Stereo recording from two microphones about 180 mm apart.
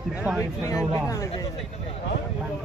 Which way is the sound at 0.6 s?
20° left (ahead or behind).